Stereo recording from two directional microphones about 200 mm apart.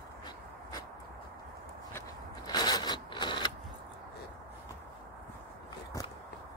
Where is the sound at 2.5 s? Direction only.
20° left (ahead or behind).